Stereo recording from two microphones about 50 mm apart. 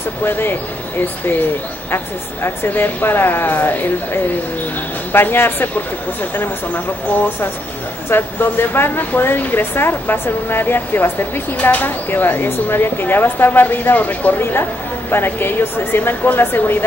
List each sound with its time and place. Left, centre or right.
0.2 s speech: left
2.4 s speech: left
14.4 s speech: left